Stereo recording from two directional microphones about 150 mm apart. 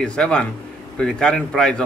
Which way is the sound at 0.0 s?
5° left (ahead or behind).